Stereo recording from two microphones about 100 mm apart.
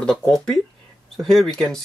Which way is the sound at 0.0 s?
5° left (ahead or behind).